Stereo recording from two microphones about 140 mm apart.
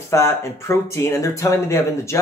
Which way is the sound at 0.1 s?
20° left (ahead or behind).